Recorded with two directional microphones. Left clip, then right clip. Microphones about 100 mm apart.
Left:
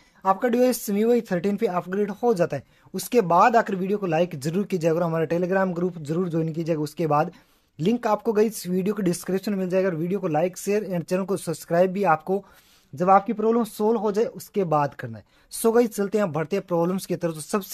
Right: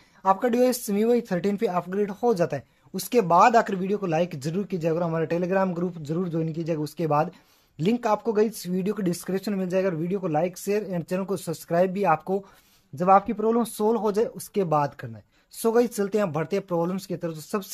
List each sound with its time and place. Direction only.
0.2 s speech: 20° left (ahead or behind)
16.8 s speech: 50° left (ahead or behind)